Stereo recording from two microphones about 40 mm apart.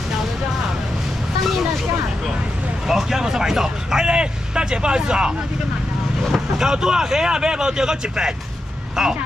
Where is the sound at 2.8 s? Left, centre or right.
Centre.